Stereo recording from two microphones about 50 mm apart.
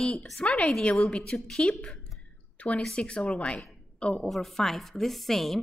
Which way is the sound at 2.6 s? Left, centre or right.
Left.